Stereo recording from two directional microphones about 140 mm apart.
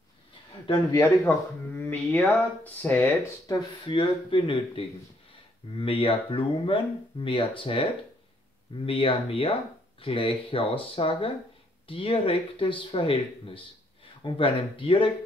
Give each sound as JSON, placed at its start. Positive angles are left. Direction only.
{"t": 1.7, "sound": "speech", "side_deg": 15}
{"t": 3.4, "sound": "speech", "side_deg": 30}